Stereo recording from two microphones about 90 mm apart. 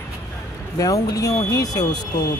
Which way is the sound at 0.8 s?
40° left (ahead or behind).